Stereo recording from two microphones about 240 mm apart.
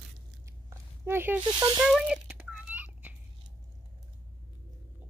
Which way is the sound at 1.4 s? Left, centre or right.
Centre.